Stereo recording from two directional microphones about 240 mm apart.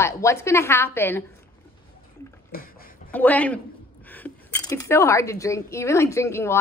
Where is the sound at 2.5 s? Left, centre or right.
Left.